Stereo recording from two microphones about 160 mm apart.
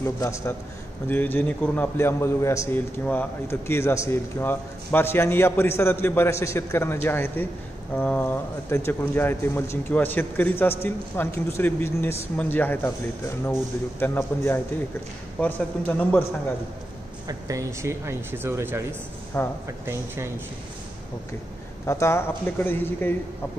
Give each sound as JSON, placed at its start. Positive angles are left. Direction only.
{"t": 0.0, "sound": "a man's voice", "side_deg": 20}
{"t": 17.3, "sound": "speech", "side_deg": -20}
{"t": 19.3, "sound": "a man's voice", "side_deg": 15}
{"t": 21.8, "sound": "a man's voice", "side_deg": 15}